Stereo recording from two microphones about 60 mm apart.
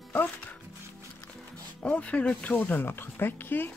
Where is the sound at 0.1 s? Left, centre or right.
Left.